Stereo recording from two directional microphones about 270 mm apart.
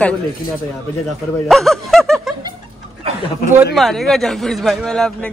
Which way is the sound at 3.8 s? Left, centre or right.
Centre.